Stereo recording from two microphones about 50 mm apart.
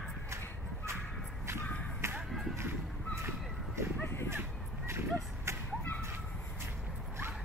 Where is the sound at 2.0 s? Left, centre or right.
Right.